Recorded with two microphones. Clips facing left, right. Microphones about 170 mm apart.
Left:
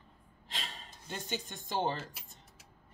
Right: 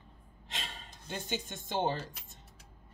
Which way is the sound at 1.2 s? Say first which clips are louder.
Right 1 dB; 20° right (ahead or behind).